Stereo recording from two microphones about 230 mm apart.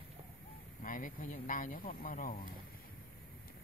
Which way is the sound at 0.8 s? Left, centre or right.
Left.